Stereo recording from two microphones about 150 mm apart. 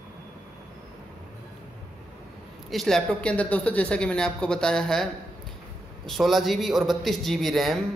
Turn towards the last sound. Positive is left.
turn(degrees=0)  # may be behind; listen again after turning